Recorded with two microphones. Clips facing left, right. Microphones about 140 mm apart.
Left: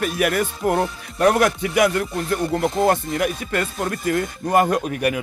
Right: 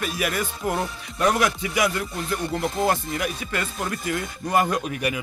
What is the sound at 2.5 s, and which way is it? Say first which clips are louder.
Speech: left 4 dB; 50° left (ahead or behind).